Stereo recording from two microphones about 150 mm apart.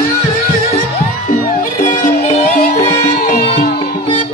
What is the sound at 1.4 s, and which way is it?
Music, 60° left (ahead or behind).